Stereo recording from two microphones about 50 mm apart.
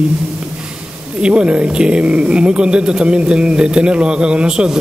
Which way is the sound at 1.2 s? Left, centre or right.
Right.